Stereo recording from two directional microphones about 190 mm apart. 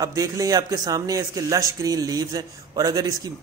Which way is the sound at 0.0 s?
15° right (ahead or behind).